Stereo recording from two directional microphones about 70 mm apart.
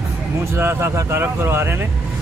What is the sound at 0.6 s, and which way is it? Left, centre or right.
Speech, right.